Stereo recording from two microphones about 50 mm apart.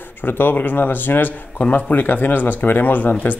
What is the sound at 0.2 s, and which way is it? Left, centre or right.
Speech, left.